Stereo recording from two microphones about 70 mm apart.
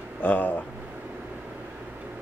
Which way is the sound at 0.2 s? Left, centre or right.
Left.